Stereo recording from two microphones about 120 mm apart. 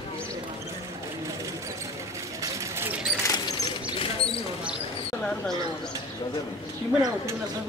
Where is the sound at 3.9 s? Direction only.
50° left (ahead or behind).